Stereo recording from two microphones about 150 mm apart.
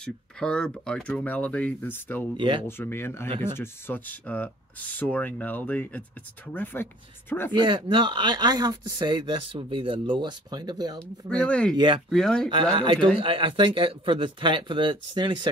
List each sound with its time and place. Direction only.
0.0 s speech: 5° left (ahead or behind)
2.3 s speech: 35° right (ahead or behind)
2.6 s speech: 15° left (ahead or behind)
7.5 s speech: 35° right (ahead or behind)
11.0 s speech: 5° left (ahead or behind)
11.7 s speech: 30° right (ahead or behind)
12.1 s speech: 5° left (ahead or behind)
12.7 s speech: 35° right (ahead or behind)